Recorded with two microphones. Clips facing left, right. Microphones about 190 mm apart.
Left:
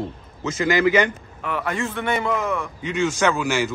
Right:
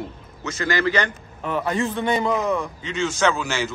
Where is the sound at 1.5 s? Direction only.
25° right (ahead or behind).